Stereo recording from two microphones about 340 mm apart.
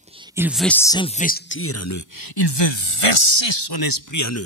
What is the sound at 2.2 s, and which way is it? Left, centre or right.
Speech, left.